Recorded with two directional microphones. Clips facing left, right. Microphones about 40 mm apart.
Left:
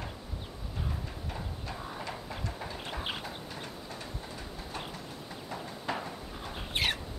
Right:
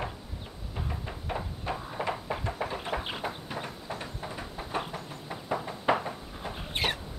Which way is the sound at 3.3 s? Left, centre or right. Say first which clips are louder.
Right 5 dB; right.